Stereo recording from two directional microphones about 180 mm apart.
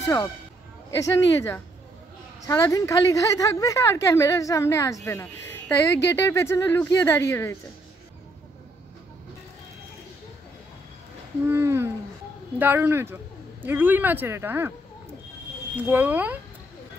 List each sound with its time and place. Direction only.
0.0 s a woman's voice: 25° left (ahead or behind)
11.4 s speech: 15° right (ahead or behind)
15.7 s speech: 10° right (ahead or behind)